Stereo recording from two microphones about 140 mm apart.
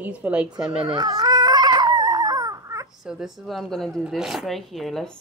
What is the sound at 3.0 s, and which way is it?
Speech, 5° right (ahead or behind).